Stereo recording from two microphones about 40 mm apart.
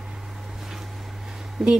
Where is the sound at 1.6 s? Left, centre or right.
Centre.